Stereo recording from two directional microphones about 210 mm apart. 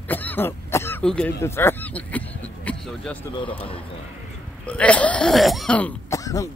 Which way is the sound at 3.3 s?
25° left (ahead or behind).